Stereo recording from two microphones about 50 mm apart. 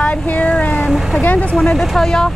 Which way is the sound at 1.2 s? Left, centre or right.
Left.